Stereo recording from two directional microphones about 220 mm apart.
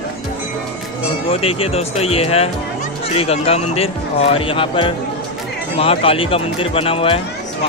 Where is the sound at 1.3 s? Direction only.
25° left (ahead or behind).